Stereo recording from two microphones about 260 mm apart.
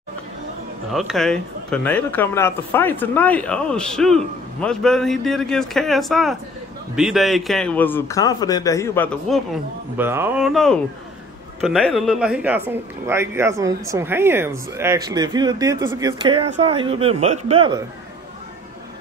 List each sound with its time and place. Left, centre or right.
0.9 s a man's voice: centre
9.9 s a man's voice: centre